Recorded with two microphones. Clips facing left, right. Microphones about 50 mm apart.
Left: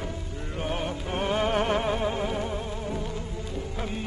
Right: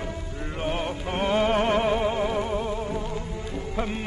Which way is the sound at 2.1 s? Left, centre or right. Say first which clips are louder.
Right 4 dB; right.